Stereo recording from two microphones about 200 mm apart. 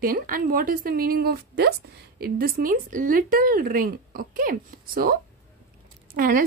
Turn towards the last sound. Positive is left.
turn(degrees=-45)  # may be behind; listen again after turning